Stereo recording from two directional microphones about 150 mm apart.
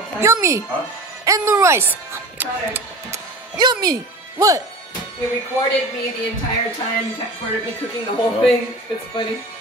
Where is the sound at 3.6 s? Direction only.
25° right (ahead or behind).